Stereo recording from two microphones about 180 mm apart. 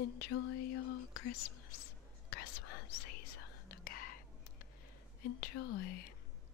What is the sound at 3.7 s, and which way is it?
Whispering, 50° left (ahead or behind).